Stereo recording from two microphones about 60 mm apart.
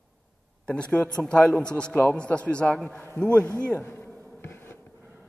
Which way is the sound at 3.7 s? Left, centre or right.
Left.